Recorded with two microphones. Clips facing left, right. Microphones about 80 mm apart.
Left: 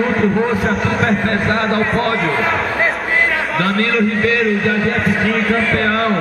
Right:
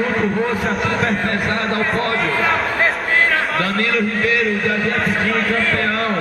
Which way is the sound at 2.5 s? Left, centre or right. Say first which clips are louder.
Left 1 dB; centre.